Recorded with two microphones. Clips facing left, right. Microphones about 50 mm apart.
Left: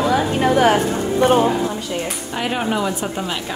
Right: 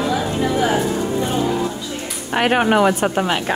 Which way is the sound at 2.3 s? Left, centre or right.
Right.